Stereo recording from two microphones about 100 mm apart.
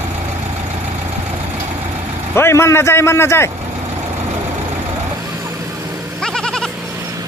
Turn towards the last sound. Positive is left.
turn(degrees=5)  # may be behind; listen again after turning